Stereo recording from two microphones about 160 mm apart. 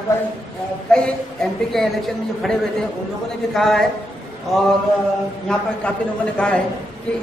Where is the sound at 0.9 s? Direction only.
5° left (ahead or behind).